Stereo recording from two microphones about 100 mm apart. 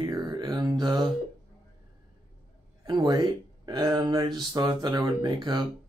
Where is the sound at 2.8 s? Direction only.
40° right (ahead or behind).